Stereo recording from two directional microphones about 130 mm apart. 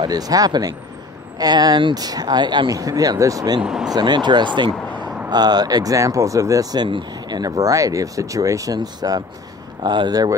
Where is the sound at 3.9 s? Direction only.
35° right (ahead or behind).